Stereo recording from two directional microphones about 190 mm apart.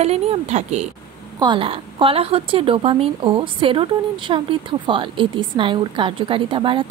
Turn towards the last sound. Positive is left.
turn(degrees=-25)  # may be behind; listen again after turning